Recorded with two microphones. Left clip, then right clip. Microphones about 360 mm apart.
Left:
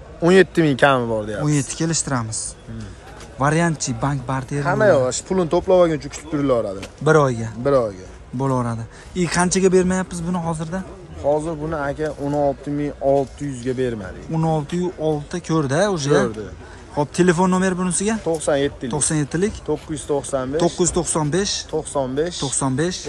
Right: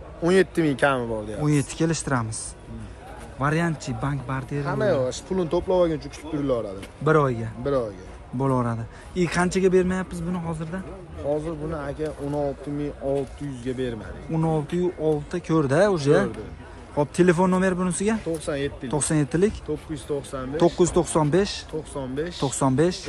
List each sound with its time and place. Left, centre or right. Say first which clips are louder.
0.2 s speech: left 6 dB; left
1.4 s speech: left 2 dB; centre
4.6 s speech: left 8 dB; left
7.1 s speech: left 5 dB; centre
7.6 s speech: left 7 dB; left
8.4 s speech: left 2 dB; centre
11.7 s speech: left 9 dB; left
14.3 s speech: left 3 dB; centre
18.4 s speech: left 8 dB; centre
18.9 s speech: left 2 dB; centre
19.9 s speech: left 7 dB; centre
20.5 s speech: right 1 dB; centre
21.9 s speech: left 9 dB; centre
22.5 s speech: even; centre